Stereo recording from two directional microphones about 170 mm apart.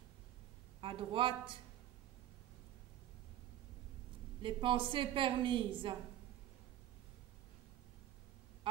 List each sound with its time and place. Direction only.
0.7 s speech: 30° right (ahead or behind)
4.4 s a woman's voice: 30° right (ahead or behind)